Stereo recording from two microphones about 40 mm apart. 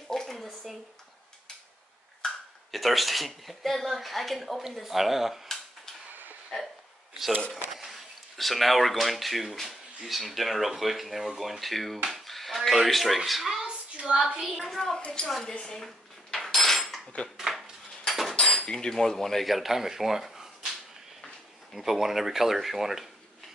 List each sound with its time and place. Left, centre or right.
0.1 s a sound: centre
2.7 s speech: centre
6.5 s hiccup: left
7.8 s speech: centre
13.7 s a sound: right
14.2 s speech: centre
14.6 s speech: centre
15.0 s a woman's voice: left
15.2 s speech: centre
15.6 s a sound: centre
16.3 s dishes: centre
18.3 s drawer open or close: left
18.9 s speech: centre
21.7 s speech: centre